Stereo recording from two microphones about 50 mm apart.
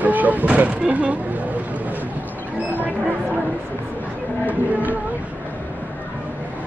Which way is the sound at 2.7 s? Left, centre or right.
Right.